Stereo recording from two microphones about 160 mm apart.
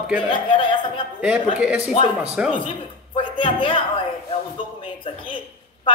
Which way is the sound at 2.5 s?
30° left (ahead or behind).